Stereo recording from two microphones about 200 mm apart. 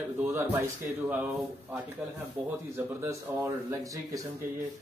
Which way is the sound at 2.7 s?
10° right (ahead or behind).